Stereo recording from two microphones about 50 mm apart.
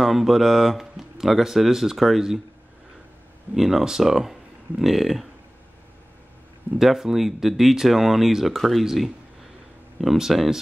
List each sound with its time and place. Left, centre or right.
0.0 s speech: centre
3.5 s speech: centre
6.8 s speech: centre